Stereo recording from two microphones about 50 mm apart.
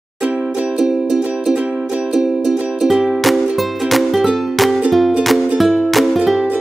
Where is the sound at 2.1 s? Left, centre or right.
Centre.